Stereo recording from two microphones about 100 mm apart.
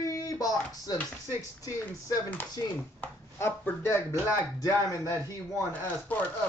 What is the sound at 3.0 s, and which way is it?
Speech, 20° left (ahead or behind).